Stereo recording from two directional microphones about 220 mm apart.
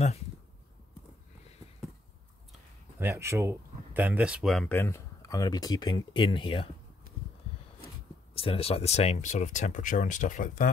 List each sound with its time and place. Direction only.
3.0 s speech: 10° right (ahead or behind); by 6.7 s 25° left (ahead or behind)
8.4 s speech: 25° left (ahead or behind)